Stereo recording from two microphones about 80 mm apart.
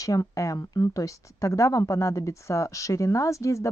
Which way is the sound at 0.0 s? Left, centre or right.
Left.